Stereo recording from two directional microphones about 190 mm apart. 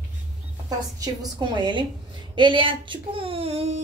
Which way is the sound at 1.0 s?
20° right (ahead or behind).